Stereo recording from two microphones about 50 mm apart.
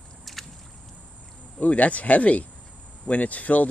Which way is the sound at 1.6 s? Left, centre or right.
Left.